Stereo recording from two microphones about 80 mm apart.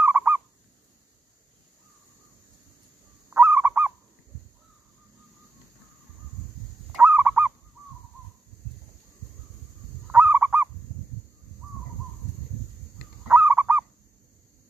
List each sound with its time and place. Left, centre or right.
0.0 s fowl: right
3.3 s goose: right
7.0 s goose: right
10.0 s goose: right
13.3 s honk: right